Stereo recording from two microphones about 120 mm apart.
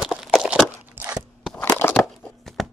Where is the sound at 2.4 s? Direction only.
Centre (ahead or behind).